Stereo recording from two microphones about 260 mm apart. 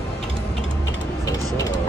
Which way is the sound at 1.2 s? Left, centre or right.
Centre.